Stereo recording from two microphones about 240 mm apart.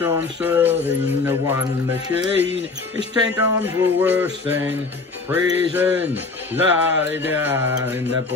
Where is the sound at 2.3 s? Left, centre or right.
Left.